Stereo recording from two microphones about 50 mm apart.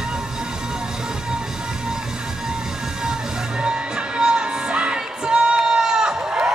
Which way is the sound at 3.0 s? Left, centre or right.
Centre.